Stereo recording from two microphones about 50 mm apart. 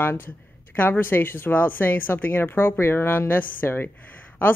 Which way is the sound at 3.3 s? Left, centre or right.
Left.